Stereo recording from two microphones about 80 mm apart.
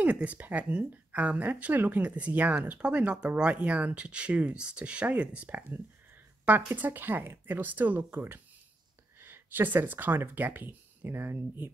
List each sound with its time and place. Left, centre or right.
0.0 s speech: centre